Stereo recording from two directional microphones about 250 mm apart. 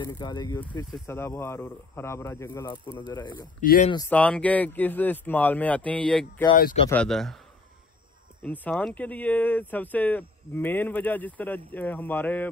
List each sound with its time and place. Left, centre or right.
0.0 s speech: centre
3.6 s speech: left
4.1 s a man's voice: centre
8.4 s speech: centre